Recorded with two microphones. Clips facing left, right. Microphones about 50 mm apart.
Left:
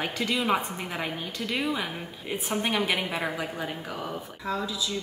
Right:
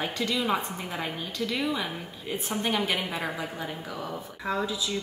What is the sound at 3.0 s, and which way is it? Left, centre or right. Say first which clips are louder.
Speech: left 2 dB; centre.